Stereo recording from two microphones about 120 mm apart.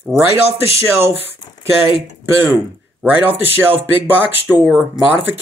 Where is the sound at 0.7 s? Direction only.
20° right (ahead or behind).